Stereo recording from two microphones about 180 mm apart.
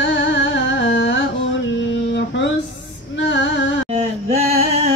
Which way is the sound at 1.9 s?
85° left.